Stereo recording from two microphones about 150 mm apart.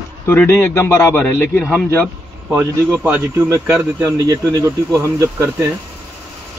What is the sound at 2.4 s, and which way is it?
Speech, 10° right (ahead or behind).